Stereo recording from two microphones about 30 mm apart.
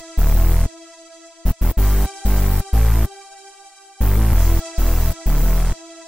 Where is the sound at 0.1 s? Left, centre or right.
Centre.